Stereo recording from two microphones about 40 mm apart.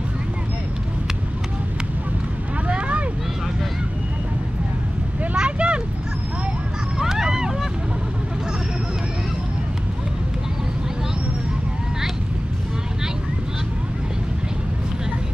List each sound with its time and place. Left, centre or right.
2.7 s vehicle: right
5.3 s vehicle: right
7.0 s run: centre